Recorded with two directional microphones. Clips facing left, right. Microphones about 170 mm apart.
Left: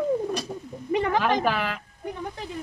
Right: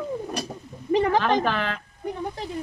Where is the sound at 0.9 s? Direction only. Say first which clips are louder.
Right 3 dB; 30° right (ahead or behind).